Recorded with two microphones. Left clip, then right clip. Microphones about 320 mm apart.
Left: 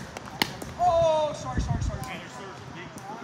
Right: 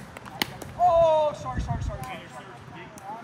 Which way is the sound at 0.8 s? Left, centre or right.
Right.